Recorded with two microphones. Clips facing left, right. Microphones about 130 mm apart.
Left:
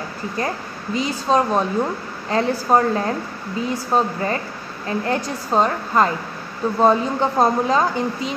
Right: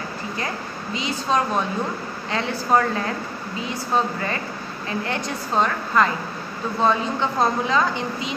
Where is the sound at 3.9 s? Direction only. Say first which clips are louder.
Left 2 dB; 35° left (ahead or behind).